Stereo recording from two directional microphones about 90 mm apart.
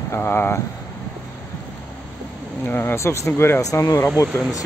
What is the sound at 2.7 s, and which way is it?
Speech, 25° left (ahead or behind).